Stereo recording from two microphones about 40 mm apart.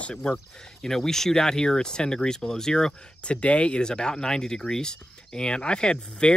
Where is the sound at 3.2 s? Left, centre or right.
Left.